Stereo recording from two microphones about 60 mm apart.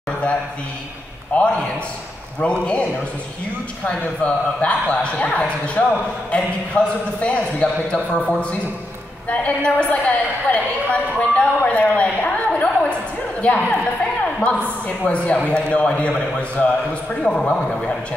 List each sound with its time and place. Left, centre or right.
1.3 s speech: left
14.2 s a sound: left
15.0 s a man's voice: centre